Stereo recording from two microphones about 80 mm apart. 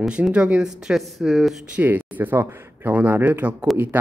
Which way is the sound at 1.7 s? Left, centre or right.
Right.